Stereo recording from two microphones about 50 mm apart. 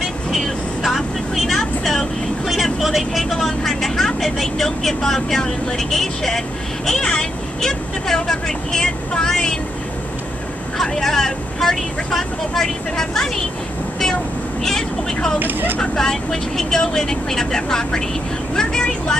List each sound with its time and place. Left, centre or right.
0.0 s speech: centre
7.0 s speech: centre
10.8 s speech: centre
14.6 s speech: centre
15.3 s speech: right
15.8 s speech: centre